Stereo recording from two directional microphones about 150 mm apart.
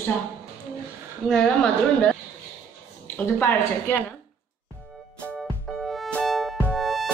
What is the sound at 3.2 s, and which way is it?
Speech, 10° left (ahead or behind).